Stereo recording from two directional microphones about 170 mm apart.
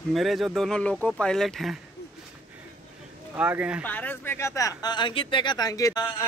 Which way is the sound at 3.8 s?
10° left (ahead or behind).